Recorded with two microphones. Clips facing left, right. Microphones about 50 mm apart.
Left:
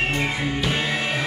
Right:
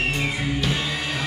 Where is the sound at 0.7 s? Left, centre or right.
Centre.